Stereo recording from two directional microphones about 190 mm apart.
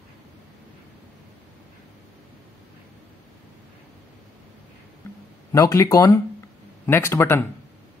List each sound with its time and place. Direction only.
5.5 s speech: 20° left (ahead or behind)